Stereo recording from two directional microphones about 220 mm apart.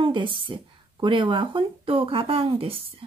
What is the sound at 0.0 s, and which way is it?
Speech, 20° right (ahead or behind).